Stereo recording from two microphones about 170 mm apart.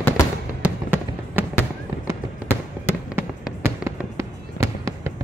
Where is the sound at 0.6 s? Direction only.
10° right (ahead or behind).